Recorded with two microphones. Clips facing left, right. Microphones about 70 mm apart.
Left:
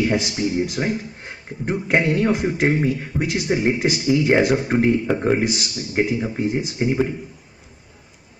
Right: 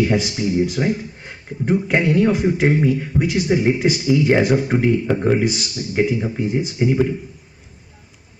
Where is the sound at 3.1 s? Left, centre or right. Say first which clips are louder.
Right 4 dB; centre.